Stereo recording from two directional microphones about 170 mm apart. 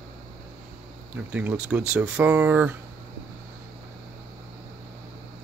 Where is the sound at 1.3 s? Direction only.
10° right (ahead or behind).